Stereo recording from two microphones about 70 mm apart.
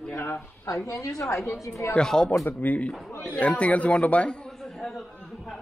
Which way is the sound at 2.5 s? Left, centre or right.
Left.